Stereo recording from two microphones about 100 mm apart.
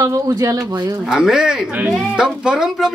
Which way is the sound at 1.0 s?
5° right (ahead or behind).